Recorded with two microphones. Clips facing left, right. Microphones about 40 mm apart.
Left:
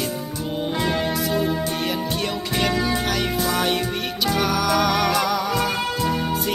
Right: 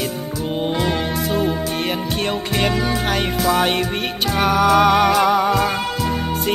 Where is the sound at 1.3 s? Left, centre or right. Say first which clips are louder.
Right 2 dB; right.